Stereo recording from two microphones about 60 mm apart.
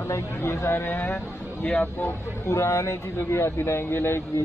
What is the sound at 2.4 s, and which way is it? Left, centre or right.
Speech, left.